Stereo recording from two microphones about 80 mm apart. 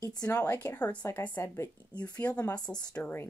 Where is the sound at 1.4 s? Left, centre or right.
Left.